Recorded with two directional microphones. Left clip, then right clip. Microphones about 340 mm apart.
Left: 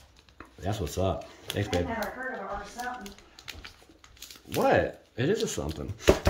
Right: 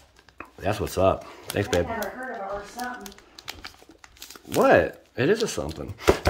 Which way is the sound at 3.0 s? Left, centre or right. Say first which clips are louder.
Right 4 dB; centre.